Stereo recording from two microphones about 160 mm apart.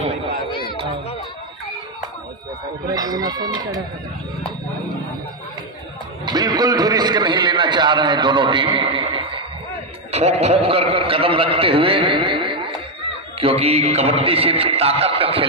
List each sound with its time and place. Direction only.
0.5 s music: 30° left (ahead or behind)
2.9 s a man's voice: 25° right (ahead or behind)
6.2 s a man's voice: 25° right (ahead or behind)